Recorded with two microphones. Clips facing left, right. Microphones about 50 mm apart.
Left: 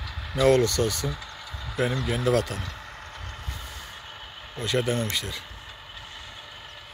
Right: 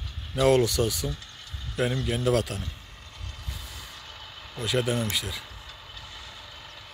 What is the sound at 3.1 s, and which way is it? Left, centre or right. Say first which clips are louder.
Vehicle: left 4 dB; left.